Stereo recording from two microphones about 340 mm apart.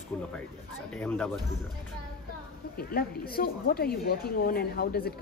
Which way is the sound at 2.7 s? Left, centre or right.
Left.